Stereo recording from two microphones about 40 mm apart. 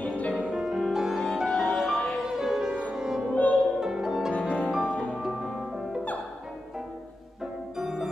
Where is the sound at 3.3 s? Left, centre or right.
Left.